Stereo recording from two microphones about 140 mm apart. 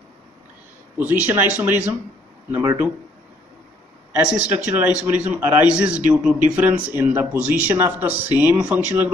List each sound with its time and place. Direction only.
0.9 s speech: 15° right (ahead or behind)
4.1 s speech: 10° right (ahead or behind)